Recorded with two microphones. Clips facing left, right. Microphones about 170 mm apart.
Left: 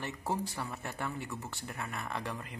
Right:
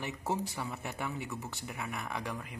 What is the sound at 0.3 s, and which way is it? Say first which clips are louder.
A man's voice: right 1 dB; 20° right (ahead or behind).